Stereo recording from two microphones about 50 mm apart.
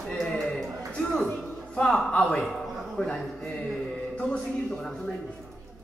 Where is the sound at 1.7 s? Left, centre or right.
Centre.